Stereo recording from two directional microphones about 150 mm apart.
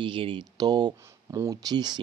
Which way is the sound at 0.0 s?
35° right (ahead or behind).